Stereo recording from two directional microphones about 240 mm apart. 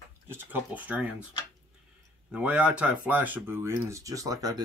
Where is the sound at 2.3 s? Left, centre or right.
Centre.